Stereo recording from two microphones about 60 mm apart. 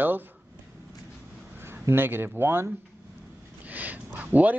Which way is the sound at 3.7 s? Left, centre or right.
Right.